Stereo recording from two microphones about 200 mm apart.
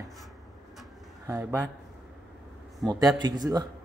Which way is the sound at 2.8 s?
20° right (ahead or behind).